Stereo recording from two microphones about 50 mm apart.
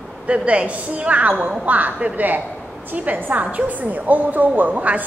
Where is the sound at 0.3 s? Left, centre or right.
Right.